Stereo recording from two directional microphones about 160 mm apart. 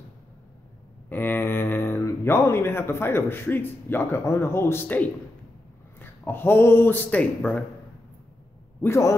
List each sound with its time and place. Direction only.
1.0 s a man's voice: 15° left (ahead or behind)
8.8 s hoot: 15° left (ahead or behind)